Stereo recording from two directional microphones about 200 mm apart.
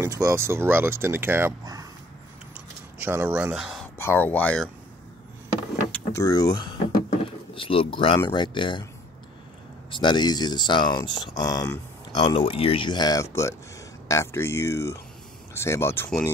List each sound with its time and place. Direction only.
0.0 s speech: 15° right (ahead or behind)
2.5 s a sound: 10° right (ahead or behind)
4.0 s speech: 10° left (ahead or behind)
5.9 s vehicle: 5° left (ahead or behind)
6.2 s speech: 20° left (ahead or behind)
9.8 s speech: 25° left (ahead or behind); by 16.3 s 5° left (ahead or behind)